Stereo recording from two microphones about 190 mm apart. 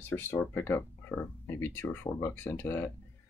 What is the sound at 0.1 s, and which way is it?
Speech, 10° left (ahead or behind).